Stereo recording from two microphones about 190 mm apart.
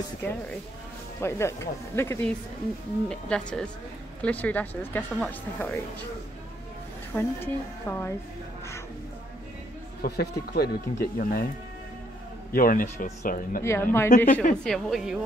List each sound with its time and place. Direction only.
0.2 s a woman's voice: 15° left (ahead or behind)
7.2 s speech: 10° left (ahead or behind)
10.0 s speech: 55° left (ahead or behind)
12.5 s speech: 50° left (ahead or behind)
13.7 s speech: 15° left (ahead or behind)
14.6 s a woman's voice: centre (ahead or behind)